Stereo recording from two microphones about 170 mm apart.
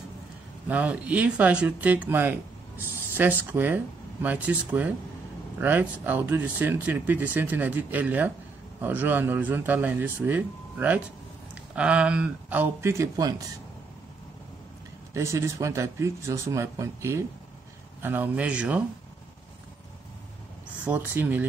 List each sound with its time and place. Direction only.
0.7 s speech: 10° right (ahead or behind)
15.1 s speech: 15° right (ahead or behind)
20.8 s speech: 10° right (ahead or behind)